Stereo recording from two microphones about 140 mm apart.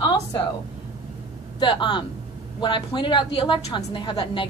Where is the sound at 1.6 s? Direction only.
35° left (ahead or behind).